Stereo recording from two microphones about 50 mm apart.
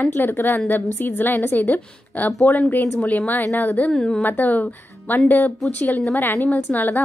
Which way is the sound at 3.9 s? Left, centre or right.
Centre.